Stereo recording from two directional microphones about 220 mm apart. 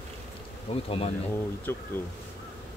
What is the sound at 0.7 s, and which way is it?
Speech, 25° left (ahead or behind).